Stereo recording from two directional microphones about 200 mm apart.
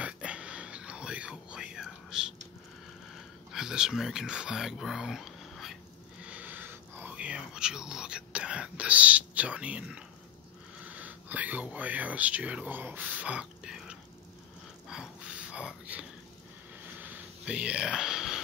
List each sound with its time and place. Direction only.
0.0 s whispering: 5° right (ahead or behind)
3.5 s speech: 5° right (ahead or behind)
6.2 s whispering: 5° right (ahead or behind)
10.8 s speech: 10° right (ahead or behind)
14.9 s whispering: 5° right (ahead or behind)
17.0 s a sound: 5° right (ahead or behind)